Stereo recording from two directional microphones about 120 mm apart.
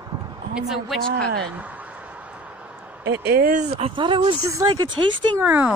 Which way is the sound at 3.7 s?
50° right (ahead or behind).